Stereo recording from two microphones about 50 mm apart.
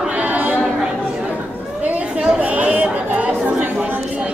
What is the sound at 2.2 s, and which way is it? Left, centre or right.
Chatter, right.